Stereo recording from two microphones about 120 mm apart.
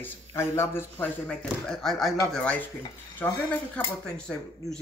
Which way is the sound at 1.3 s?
5° left (ahead or behind).